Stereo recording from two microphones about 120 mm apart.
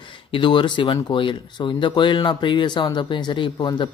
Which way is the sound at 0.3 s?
45° left (ahead or behind).